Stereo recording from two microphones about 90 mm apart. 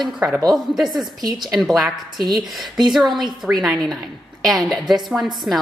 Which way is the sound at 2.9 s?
Centre (ahead or behind).